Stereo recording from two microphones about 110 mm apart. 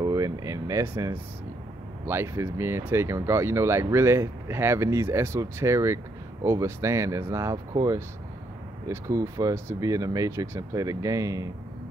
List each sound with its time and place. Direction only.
0.0 s air conditioning: 35° right (ahead or behind)
2.0 s speech: 25° right (ahead or behind)